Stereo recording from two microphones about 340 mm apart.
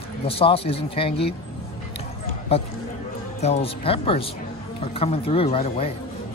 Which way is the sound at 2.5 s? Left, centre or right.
Centre.